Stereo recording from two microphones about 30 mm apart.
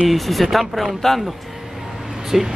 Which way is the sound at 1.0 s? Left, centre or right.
Centre.